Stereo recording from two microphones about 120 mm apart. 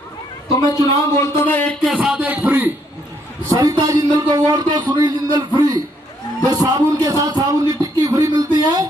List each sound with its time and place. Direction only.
0.6 s a man's voice: 30° left (ahead or behind)
1.2 s a sound: 15° left (ahead or behind)
1.8 s speech: 5° right (ahead or behind)
3.5 s speech: 30° right (ahead or behind)